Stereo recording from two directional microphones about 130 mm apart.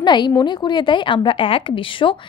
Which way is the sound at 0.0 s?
35° left (ahead or behind).